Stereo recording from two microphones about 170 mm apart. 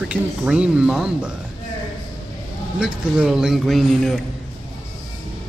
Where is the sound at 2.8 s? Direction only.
5° right (ahead or behind).